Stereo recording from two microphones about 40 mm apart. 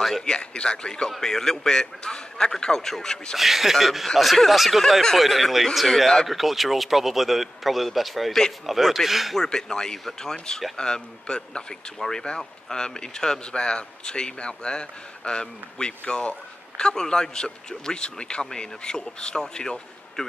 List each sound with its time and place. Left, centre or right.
0.0 s a sound: centre
0.3 s speech: left
1.2 s a man's voice: centre
3.3 s a man's voice: centre
9.4 s a man's voice: centre